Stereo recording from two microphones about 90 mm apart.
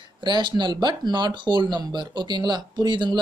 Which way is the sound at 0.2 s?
60° right (ahead or behind).